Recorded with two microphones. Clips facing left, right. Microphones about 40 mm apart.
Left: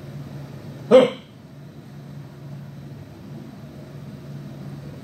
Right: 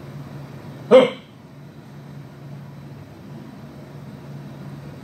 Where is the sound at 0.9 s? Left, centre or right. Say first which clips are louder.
Right 1 dB; centre.